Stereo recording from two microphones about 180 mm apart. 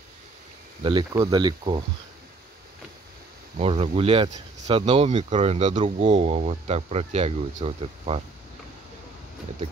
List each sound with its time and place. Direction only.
0.8 s speech: 25° right (ahead or behind)
3.5 s speech: 35° right (ahead or behind)